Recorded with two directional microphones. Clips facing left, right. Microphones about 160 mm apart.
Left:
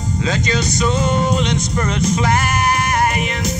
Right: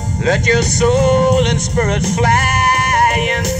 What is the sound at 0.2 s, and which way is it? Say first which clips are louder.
Speech: right 6 dB; 65° right (ahead or behind).